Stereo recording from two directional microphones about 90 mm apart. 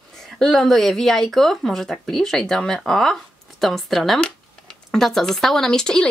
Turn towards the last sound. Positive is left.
turn(degrees=5)  # may be behind; listen again after turning